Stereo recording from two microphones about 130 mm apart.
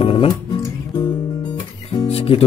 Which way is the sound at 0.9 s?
35° left (ahead or behind).